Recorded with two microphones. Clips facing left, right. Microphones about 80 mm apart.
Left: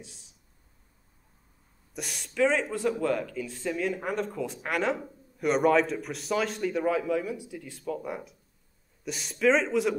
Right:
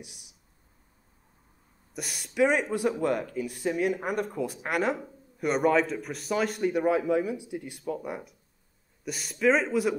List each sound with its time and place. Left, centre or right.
0.0 s speech: centre
2.0 s speech: centre